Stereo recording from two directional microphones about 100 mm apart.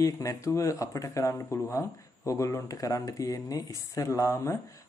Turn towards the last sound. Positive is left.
turn(degrees=30)  # may be behind; listen again after turning